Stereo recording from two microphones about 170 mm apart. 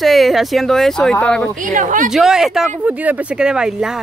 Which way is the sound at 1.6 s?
50° right (ahead or behind).